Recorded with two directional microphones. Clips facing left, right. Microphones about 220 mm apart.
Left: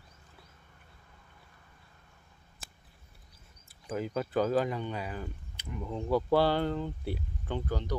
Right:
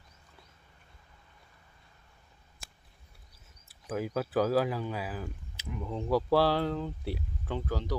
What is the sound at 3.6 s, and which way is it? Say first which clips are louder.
Speech: right 1 dB; 5° right (ahead or behind).